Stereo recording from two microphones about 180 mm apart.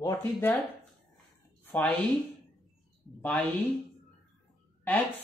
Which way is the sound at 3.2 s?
10° left (ahead or behind).